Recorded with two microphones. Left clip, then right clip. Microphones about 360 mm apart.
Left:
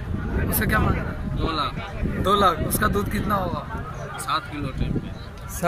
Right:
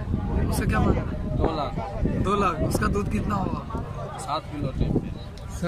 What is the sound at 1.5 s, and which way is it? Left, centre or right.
Speech, right.